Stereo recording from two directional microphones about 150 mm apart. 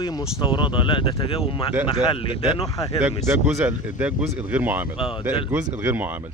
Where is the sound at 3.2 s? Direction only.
15° right (ahead or behind).